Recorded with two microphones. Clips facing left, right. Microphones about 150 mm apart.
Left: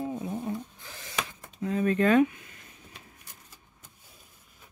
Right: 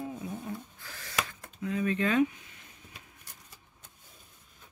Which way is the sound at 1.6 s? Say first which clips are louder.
Left 4 dB; 40° left (ahead or behind).